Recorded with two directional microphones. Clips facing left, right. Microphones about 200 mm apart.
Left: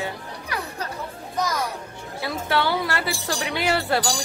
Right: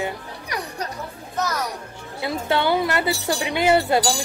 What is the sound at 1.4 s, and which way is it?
Speech, 10° left (ahead or behind).